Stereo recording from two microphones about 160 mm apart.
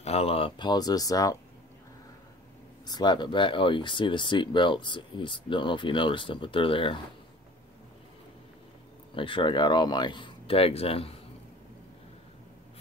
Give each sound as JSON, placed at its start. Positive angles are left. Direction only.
{"t": 0.0, "sound": "speech", "side_deg": 40}
{"t": 2.9, "sound": "speech", "side_deg": 25}
{"t": 9.1, "sound": "speech", "side_deg": 30}